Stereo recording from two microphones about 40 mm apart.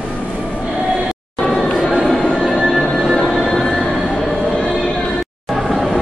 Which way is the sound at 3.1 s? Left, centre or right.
Centre.